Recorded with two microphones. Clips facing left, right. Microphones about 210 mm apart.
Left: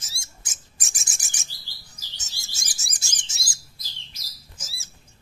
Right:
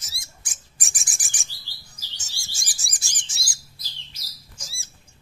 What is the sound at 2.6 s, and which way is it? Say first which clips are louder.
Bird: left 1 dB; 20° left (ahead or behind).